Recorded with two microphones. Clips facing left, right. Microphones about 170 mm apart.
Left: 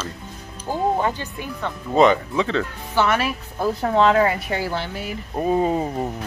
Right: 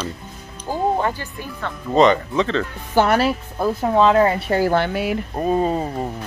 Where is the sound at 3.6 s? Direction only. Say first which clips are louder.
Right 2 dB; 15° right (ahead or behind).